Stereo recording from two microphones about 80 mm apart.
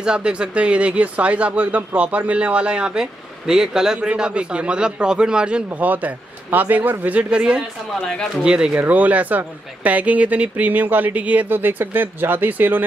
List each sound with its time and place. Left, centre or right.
0.0 s speech: centre
8.0 s speech: centre
8.5 s speech: centre